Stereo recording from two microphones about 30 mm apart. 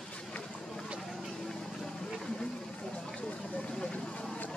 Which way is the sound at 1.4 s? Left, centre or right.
Centre.